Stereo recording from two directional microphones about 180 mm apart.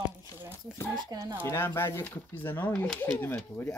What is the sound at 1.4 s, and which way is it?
Speech, 15° left (ahead or behind).